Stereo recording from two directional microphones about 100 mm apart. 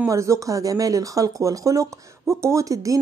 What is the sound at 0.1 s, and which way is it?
Speech, 30° right (ahead or behind).